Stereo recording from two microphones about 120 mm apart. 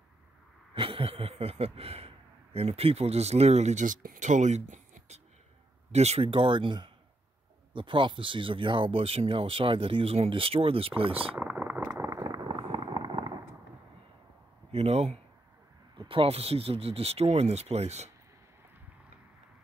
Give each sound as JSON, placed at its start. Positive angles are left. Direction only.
{"t": 0.7, "sound": "speech", "side_deg": -50}
{"t": 5.9, "sound": "speech", "side_deg": -65}
{"t": 11.3, "sound": "a sound", "side_deg": -15}
{"t": 11.9, "sound": "a sound", "side_deg": -25}
{"t": 14.7, "sound": "speech", "side_deg": -60}
{"t": 16.0, "sound": "speech", "side_deg": -50}